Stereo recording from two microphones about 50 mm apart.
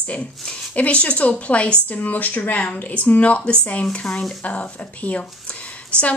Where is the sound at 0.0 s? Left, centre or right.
Left.